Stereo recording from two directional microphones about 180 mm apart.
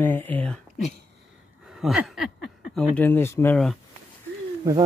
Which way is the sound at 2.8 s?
10° left (ahead or behind).